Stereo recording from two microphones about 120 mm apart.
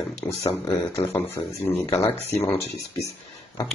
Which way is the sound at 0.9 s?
20° left (ahead or behind).